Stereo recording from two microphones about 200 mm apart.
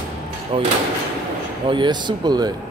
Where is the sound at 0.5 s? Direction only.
30° right (ahead or behind).